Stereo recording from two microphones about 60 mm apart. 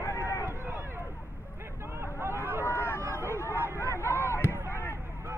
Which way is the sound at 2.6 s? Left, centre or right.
Left.